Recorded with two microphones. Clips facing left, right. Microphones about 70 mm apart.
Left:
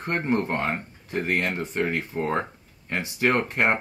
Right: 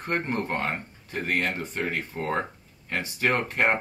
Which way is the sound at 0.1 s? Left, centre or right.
Centre.